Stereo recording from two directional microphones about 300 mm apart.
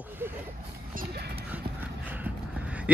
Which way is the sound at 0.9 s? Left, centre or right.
Right.